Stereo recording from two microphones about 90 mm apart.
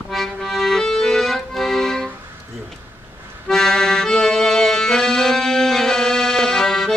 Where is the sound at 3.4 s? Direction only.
5° left (ahead or behind).